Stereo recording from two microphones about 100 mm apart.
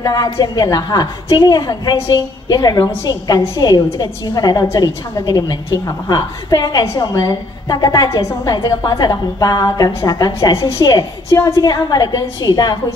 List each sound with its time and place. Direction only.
0.0 s a woman's voice: 35° left (ahead or behind)
11.3 s a woman's voice: 30° left (ahead or behind)
11.6 s a woman's voice: 40° left (ahead or behind)